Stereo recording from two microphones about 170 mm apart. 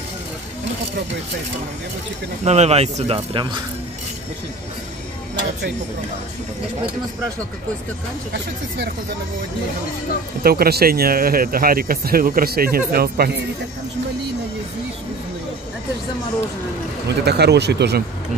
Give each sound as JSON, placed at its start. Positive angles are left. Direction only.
{"t": 2.4, "sound": "speech", "side_deg": -40}
{"t": 8.3, "sound": "speech", "side_deg": -90}
{"t": 10.4, "sound": "speech", "side_deg": -65}
{"t": 17.2, "sound": "speech", "side_deg": -75}